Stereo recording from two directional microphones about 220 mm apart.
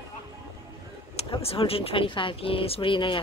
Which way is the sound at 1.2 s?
25° left (ahead or behind).